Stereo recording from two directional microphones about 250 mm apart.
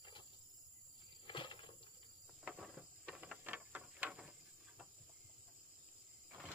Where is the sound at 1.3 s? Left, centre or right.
Centre.